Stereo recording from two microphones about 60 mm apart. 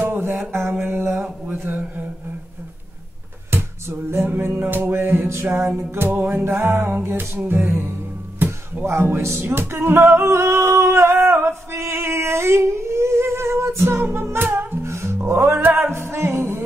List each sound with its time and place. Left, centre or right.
0.0 s music: right
3.4 s music: right
6.0 s music: right
8.8 s music: right
14.5 s music: right
14.9 s music: right
15.1 s music: right